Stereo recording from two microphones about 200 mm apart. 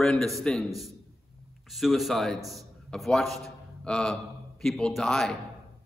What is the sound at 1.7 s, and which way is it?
A man's voice, centre (ahead or behind).